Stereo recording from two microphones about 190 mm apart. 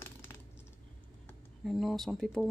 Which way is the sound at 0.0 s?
15° left (ahead or behind).